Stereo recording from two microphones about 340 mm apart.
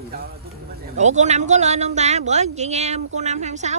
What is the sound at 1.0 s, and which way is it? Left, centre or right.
A man's voice, right.